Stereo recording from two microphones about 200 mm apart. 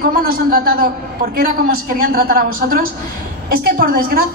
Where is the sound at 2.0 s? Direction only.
50° right (ahead or behind).